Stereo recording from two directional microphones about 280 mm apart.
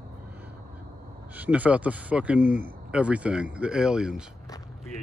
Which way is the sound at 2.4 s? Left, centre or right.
Left.